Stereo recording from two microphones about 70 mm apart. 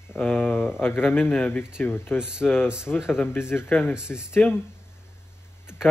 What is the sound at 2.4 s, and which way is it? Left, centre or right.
Speech, left.